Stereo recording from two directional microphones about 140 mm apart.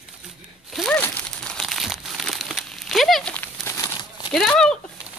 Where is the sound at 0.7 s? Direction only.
Centre (ahead or behind).